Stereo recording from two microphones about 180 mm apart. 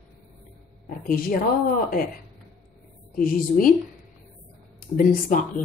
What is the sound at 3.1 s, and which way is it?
Speech, 50° left (ahead or behind).